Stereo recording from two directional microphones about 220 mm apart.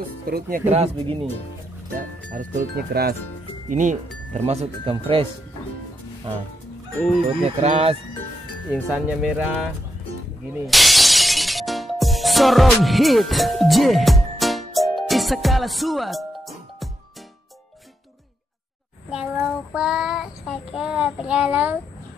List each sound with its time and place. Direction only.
0.3 s speech: 40° right (ahead or behind)
2.3 s speech: 40° right (ahead or behind)
3.6 s speech: 35° right (ahead or behind)
7.4 s speech: 25° right (ahead or behind)
8.9 s speech: 5° right (ahead or behind)
10.7 s music: centre (ahead or behind)
19.0 s child singing: 5° right (ahead or behind)